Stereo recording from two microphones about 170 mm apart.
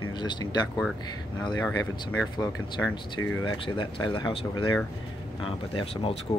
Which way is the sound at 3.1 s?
30° left (ahead or behind).